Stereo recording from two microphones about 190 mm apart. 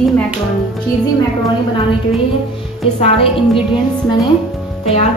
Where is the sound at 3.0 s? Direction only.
30° left (ahead or behind).